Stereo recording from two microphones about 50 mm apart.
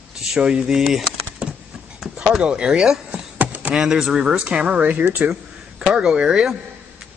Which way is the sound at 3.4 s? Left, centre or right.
Right.